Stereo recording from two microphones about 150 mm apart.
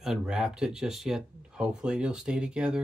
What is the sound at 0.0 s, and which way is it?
Speech, 5° right (ahead or behind).